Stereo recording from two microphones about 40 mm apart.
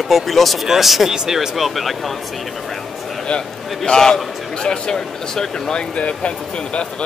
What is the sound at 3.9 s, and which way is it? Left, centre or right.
Speech, centre.